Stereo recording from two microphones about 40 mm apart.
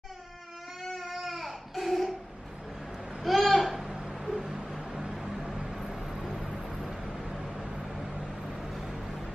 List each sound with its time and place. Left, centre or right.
0.8 s baby cry: centre
3.2 s a sound: centre
6.5 s vehicle: centre